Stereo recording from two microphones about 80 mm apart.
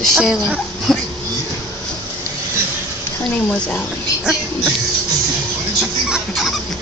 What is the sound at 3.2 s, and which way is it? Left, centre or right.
Speech, centre.